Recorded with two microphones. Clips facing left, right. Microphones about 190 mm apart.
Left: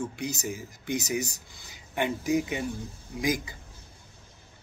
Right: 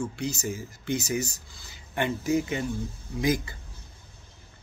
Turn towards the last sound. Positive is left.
turn(degrees=15)  # may be behind; listen again after turning